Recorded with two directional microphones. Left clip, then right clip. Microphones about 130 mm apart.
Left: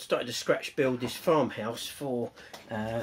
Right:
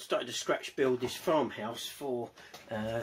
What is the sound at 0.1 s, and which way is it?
Speech, 40° left (ahead or behind).